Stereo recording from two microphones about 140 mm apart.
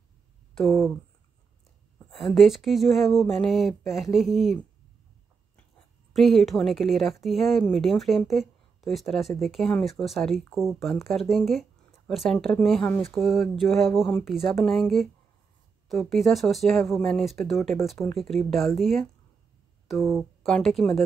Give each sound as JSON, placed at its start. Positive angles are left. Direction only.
{"t": 0.6, "sound": "speech", "side_deg": 0}
{"t": 2.0, "sound": "speech", "side_deg": 0}
{"t": 6.1, "sound": "speech", "side_deg": 0}
{"t": 13.8, "sound": "speech", "side_deg": 20}
{"t": 14.1, "sound": "speech", "side_deg": 0}